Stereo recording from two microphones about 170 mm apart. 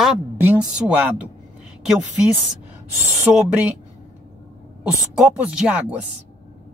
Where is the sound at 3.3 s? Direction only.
5° right (ahead or behind).